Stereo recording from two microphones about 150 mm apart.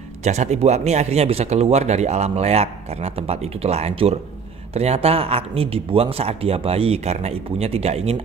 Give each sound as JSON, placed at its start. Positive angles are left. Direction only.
{"t": 0.2, "sound": "speech", "side_deg": -50}